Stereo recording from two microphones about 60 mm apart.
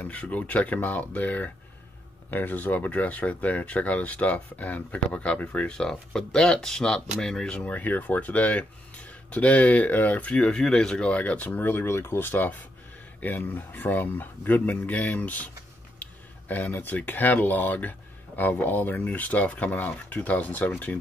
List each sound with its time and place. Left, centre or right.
0.0 s speech: left
7.7 s speech: left
11.6 s speech: left